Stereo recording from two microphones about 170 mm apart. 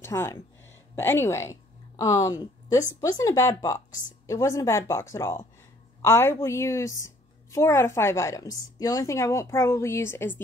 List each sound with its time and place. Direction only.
0.0 s a woman's voice: 15° left (ahead or behind)